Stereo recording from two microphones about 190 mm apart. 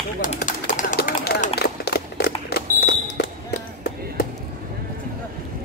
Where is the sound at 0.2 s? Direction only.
45° left (ahead or behind); by 3.3 s 60° left (ahead or behind).